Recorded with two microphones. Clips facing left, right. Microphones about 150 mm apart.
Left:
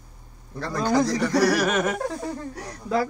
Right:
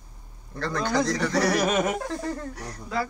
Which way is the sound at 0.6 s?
5° left (ahead or behind).